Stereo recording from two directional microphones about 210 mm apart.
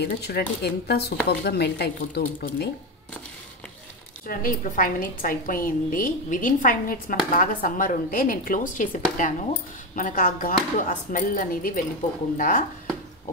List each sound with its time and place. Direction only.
0.0 s speech: 50° left (ahead or behind)
4.3 s a woman's voice: 40° left (ahead or behind)